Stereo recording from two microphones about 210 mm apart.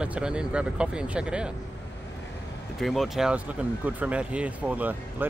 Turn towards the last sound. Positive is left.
turn(degrees=-10)  # may be behind; listen again after turning